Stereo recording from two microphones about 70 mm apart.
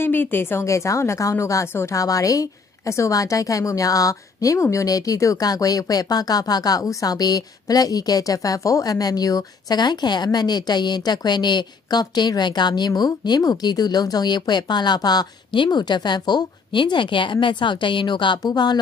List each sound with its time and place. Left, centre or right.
0.0 s speech: left
15.7 s speech: left